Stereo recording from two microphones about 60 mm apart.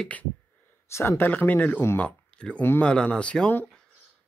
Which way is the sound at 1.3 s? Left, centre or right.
Left.